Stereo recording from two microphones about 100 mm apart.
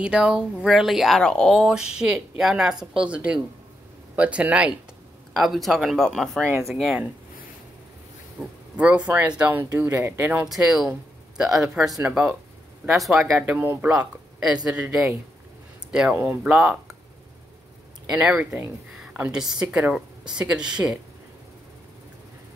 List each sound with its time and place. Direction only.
0.0 s speech: 10° right (ahead or behind); by 1.6 s 5° left (ahead or behind)
1.6 s speech: 5° right (ahead or behind)
5.3 s speech: centre (ahead or behind)
8.4 s speech: 15° right (ahead or behind)
10.5 s speech: 5° right (ahead or behind)
13.5 s speech: 20° right (ahead or behind)
13.9 s speech: 5° right (ahead or behind)
18.1 s speech: 10° right (ahead or behind)